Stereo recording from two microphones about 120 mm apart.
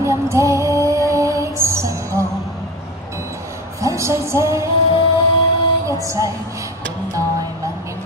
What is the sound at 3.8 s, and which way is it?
Music, 25° right (ahead or behind).